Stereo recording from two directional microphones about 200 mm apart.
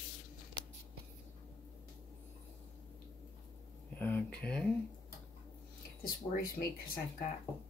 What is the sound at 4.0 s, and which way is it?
Speech, 5° left (ahead or behind).